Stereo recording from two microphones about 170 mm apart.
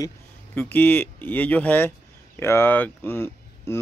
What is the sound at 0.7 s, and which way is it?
Speech, 10° left (ahead or behind).